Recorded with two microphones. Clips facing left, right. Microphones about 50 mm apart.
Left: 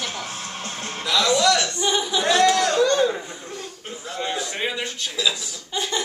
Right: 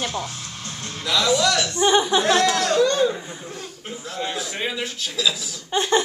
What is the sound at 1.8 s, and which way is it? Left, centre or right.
Speech, right.